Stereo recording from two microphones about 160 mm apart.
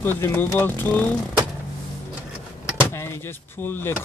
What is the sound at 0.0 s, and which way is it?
Speech, 15° left (ahead or behind).